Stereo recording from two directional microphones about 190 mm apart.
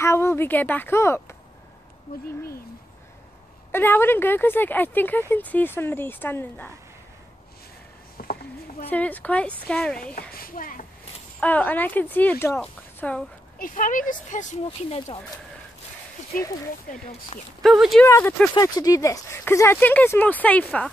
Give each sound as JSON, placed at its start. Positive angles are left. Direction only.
{"t": 0.0, "sound": "speech", "side_deg": 15}
{"t": 3.7, "sound": "speech", "side_deg": 10}
{"t": 8.2, "sound": "a sound", "side_deg": 50}
{"t": 8.9, "sound": "speech", "side_deg": 10}
{"t": 10.1, "sound": "a woman's voice", "side_deg": 50}
{"t": 11.3, "sound": "speech", "side_deg": 10}
{"t": 13.6, "sound": "a woman's voice", "side_deg": 45}
{"t": 14.7, "sound": "speech", "side_deg": 30}
{"t": 16.9, "sound": "speech", "side_deg": 35}
{"t": 17.6, "sound": "speech", "side_deg": 0}
{"t": 18.0, "sound": "speech", "side_deg": 15}